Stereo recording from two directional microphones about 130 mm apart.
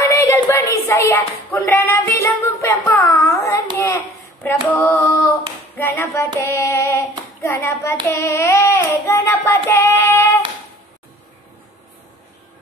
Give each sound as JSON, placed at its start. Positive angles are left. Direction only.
{"t": 0.0, "sound": "speech", "side_deg": 20}
{"t": 3.7, "sound": "a sound", "side_deg": 25}
{"t": 4.4, "sound": "hands", "side_deg": 15}
{"t": 5.8, "sound": "child singing", "side_deg": 20}